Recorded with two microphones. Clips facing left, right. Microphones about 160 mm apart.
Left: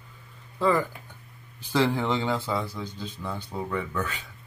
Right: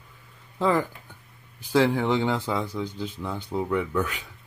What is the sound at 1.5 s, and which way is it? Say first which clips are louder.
Speech: right 3 dB; 15° right (ahead or behind).